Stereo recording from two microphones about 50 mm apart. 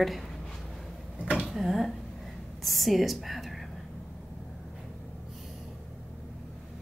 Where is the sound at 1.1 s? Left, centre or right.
Right.